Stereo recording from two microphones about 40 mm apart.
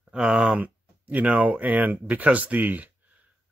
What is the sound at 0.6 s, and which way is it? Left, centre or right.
Speech, right.